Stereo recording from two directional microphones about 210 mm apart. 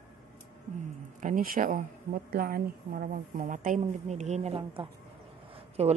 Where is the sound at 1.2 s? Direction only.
40° right (ahead or behind).